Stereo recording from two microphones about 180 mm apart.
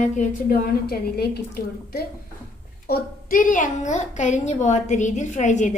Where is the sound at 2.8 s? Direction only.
50° left (ahead or behind).